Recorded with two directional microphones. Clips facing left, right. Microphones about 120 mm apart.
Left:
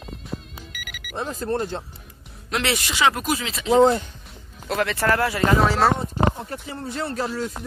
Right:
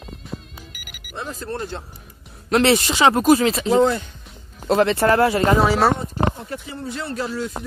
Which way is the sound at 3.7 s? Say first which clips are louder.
Left 2 dB; 30° left (ahead or behind).